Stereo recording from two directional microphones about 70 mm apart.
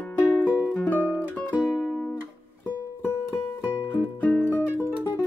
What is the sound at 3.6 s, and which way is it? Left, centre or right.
Music, left.